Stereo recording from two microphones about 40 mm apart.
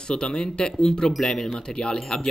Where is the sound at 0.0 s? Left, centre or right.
Left.